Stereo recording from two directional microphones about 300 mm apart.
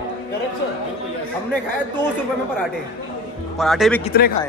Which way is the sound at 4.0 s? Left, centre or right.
Left.